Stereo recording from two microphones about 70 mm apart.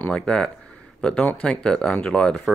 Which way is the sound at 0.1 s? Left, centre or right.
Centre.